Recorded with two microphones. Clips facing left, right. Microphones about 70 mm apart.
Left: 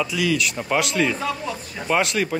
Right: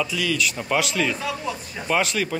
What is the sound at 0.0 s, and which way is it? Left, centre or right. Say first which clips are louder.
Speech: left 2 dB; centre.